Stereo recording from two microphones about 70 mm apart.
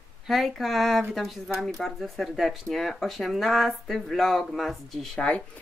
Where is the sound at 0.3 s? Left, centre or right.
Centre.